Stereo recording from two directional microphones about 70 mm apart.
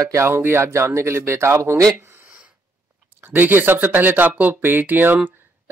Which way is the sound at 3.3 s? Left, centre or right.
Right.